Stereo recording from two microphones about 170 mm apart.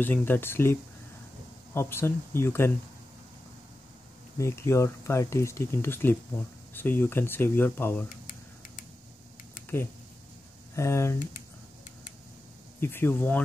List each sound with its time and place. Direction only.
0.0 s speech: 10° left (ahead or behind)
4.4 s speech: 15° left (ahead or behind)
10.8 s speech: 15° left (ahead or behind)
12.8 s speech: 10° left (ahead or behind)